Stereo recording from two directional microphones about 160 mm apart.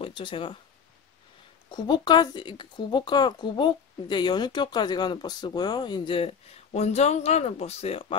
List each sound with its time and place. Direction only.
0.0 s speech: 35° left (ahead or behind)
1.7 s speech: 25° left (ahead or behind)